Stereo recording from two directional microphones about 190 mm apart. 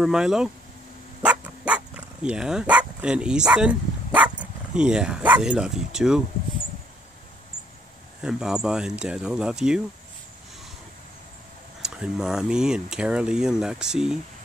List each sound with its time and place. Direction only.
0.0 s speech: 5° right (ahead or behind)
8.2 s speech: 5° right (ahead or behind)
11.8 s speech: 5° right (ahead or behind)